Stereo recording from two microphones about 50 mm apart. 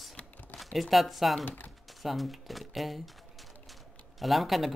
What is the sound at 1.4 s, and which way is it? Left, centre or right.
Speech, left.